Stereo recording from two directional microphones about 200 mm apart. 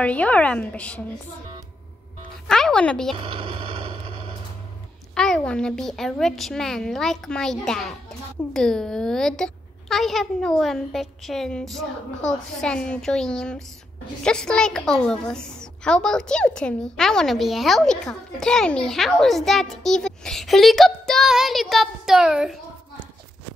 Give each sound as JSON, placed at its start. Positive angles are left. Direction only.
{"t": 0.0, "sound": "a woman's voice", "side_deg": 5}
{"t": 2.4, "sound": "speech", "side_deg": 5}
{"t": 3.2, "sound": "vehicle", "side_deg": -25}
{"t": 5.1, "sound": "a child's voice", "side_deg": 5}